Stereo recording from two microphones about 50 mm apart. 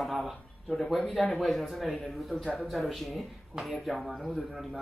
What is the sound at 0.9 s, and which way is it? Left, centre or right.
Speech, centre.